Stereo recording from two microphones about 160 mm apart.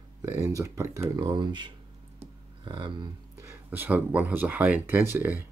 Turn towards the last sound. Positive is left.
turn(degrees=-10)  # may be behind; listen again after turning